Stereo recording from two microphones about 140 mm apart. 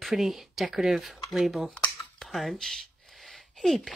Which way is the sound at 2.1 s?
Centre (ahead or behind).